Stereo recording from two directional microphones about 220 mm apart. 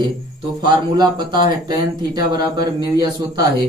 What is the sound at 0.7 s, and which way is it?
Speech, 20° right (ahead or behind).